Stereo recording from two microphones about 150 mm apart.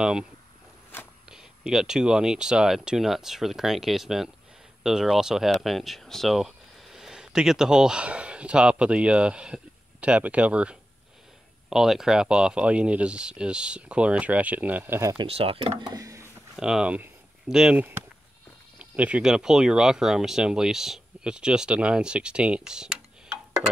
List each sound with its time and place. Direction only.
0.0 s speech: 5° right (ahead or behind)
1.3 s speech: 5° right (ahead or behind)
15.1 s speech: 40° right (ahead or behind)
15.9 s a sound: 20° right (ahead or behind)
16.5 s speech: 5° right (ahead or behind)